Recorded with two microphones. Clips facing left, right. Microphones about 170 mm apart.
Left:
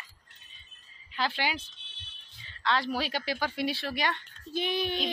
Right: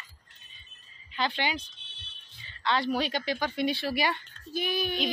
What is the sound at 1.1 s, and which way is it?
A woman's voice, 5° left (ahead or behind).